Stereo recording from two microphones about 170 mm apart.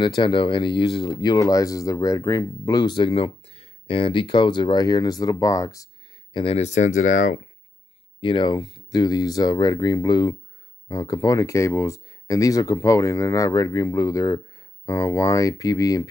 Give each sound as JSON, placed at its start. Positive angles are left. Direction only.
{"t": 0.0, "sound": "speech", "side_deg": 25}
{"t": 6.3, "sound": "speech", "side_deg": 35}
{"t": 8.2, "sound": "speech", "side_deg": 30}